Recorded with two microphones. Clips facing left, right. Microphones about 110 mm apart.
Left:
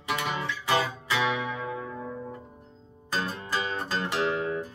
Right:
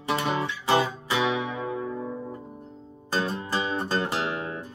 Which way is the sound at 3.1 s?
30° right (ahead or behind).